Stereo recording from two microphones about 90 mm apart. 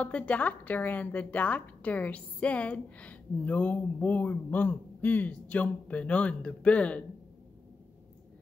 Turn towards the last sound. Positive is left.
turn(degrees=15)  # may be behind; listen again after turning